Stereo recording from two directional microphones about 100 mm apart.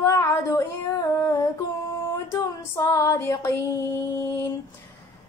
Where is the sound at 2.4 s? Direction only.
30° left (ahead or behind).